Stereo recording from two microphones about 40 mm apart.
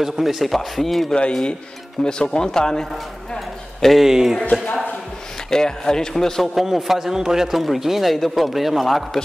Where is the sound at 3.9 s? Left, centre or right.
Centre.